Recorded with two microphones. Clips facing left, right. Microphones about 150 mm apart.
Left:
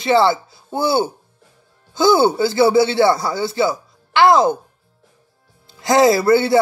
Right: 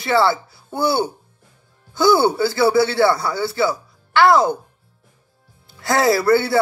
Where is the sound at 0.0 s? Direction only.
20° left (ahead or behind).